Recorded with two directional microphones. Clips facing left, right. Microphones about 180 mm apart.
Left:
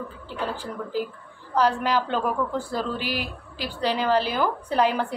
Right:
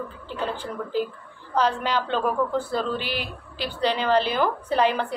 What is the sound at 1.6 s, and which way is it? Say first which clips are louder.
A woman's voice: left 1 dB; 10° left (ahead or behind).